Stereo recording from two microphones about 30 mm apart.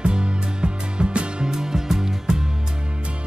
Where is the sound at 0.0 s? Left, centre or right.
Right.